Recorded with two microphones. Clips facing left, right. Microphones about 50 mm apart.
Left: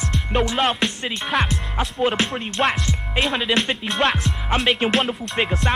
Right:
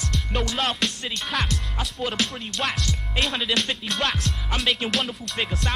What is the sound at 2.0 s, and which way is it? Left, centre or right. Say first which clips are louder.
Speech: left 6 dB; left.